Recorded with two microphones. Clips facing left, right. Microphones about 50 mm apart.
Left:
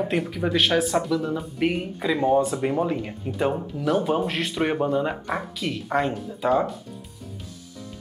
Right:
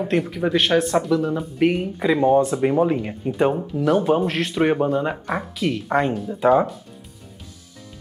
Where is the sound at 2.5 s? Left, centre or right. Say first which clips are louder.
Right 5 dB; centre.